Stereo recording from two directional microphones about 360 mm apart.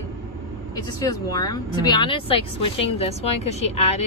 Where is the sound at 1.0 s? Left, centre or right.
Centre.